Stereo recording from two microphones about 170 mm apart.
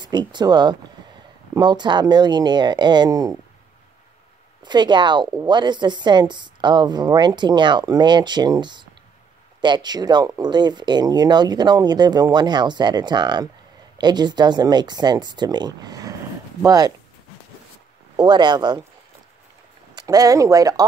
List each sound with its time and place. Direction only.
0.0 s speech: 25° right (ahead or behind)
4.6 s speech: 25° right (ahead or behind)
18.1 s speech: 25° right (ahead or behind)
20.0 s speech: 20° right (ahead or behind)